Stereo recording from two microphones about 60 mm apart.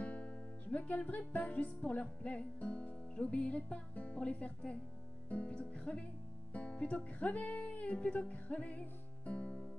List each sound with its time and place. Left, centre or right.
0.0 s music: left